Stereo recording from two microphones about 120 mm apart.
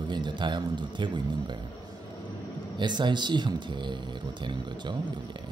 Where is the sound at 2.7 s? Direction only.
40° right (ahead or behind).